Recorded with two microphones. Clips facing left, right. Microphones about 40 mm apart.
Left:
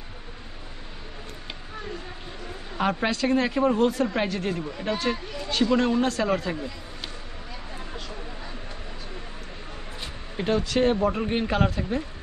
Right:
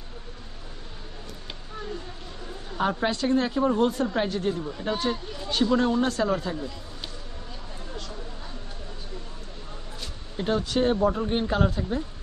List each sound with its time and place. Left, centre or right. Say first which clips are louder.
2.8 s speech: left 1 dB; left
10.3 s speech: left 1 dB; left
11.1 s speech: even; left